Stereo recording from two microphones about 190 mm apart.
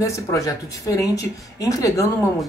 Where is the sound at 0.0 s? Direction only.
15° left (ahead or behind).